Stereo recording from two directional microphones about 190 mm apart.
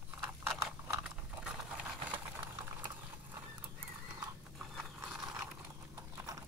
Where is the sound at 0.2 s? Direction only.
10° right (ahead or behind).